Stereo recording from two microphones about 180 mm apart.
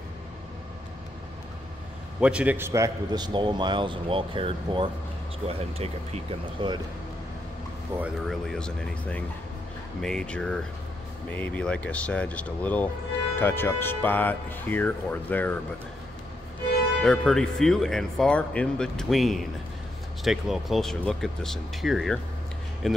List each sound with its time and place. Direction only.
2.1 s a man's voice: 5° right (ahead or behind); by 6.8 s 30° right (ahead or behind)
8.0 s speech: centre (ahead or behind)
17.0 s speech: 5° left (ahead or behind)